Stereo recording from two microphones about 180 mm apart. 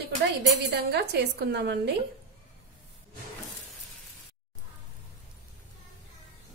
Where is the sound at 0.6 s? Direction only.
65° right (ahead or behind).